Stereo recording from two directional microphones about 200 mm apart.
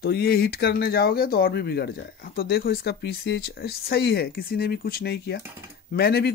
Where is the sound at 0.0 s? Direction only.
50° left (ahead or behind).